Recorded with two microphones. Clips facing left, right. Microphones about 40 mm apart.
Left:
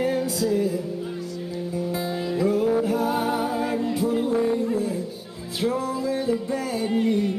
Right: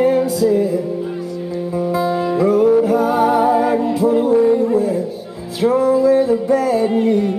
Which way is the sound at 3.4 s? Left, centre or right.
Right.